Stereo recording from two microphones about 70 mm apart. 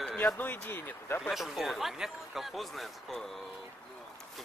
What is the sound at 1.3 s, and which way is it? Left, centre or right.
Speech, centre.